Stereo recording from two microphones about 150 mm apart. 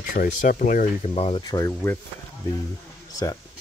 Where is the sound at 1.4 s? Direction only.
25° left (ahead or behind).